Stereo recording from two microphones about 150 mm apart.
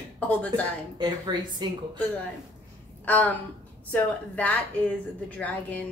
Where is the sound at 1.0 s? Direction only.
30° right (ahead or behind).